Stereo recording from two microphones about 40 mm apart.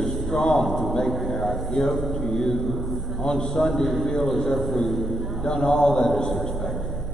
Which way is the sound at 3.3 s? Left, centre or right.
Left.